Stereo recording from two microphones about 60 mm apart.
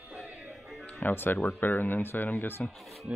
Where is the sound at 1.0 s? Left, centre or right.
Left.